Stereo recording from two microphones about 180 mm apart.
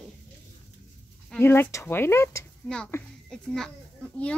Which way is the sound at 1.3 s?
10° left (ahead or behind).